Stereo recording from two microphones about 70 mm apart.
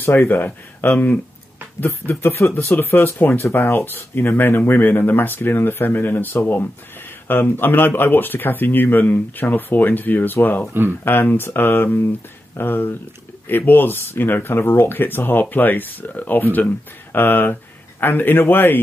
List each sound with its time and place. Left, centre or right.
0.0 s speech: left
1.8 s speech: left
10.7 s speech: right
11.1 s speech: left